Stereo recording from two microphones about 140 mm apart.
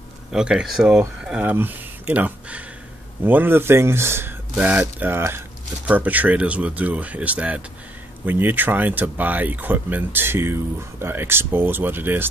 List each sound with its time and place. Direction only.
0.3 s speech: 5° right (ahead or behind)